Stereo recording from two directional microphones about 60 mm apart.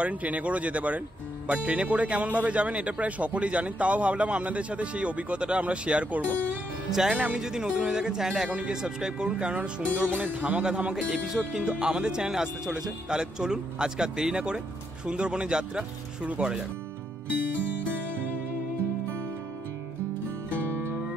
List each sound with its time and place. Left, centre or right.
0.0 s speech: right
6.9 s speech: centre
8.5 s speech: centre